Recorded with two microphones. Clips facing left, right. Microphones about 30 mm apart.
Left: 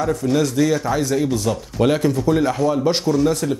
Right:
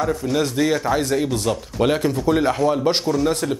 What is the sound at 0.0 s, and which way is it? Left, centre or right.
Speech, centre.